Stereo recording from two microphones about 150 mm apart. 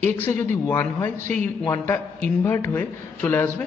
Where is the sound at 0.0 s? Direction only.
15° left (ahead or behind).